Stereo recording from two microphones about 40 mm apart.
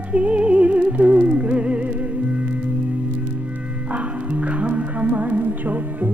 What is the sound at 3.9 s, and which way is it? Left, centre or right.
Music, right.